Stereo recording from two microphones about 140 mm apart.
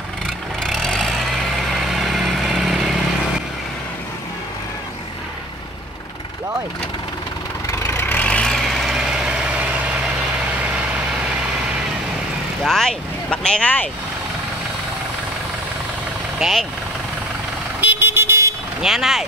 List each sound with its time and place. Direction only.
0.7 s vehicle: 5° left (ahead or behind)
7.8 s vehicle: 15° left (ahead or behind); by 9.8 s 10° right (ahead or behind)
12.6 s vehicle: 5° left (ahead or behind)
16.3 s speech: centre (ahead or behind)
17.7 s vehicle: 15° right (ahead or behind)
18.8 s speech: centre (ahead or behind)